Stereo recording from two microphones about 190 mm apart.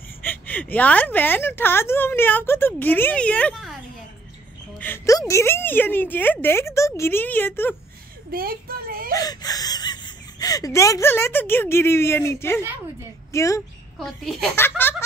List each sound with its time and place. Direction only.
0.2 s a woman's voice: 10° left (ahead or behind)
4.7 s a woman's voice: 10° left (ahead or behind)
8.3 s a woman's voice: 50° right (ahead or behind)
9.1 s speech: 20° left (ahead or behind)
13.9 s a woman's voice: centre (ahead or behind)